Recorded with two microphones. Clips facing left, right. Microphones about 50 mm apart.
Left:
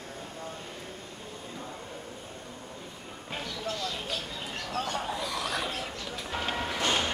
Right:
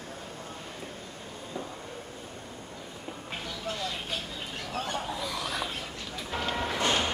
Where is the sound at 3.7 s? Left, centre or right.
Centre.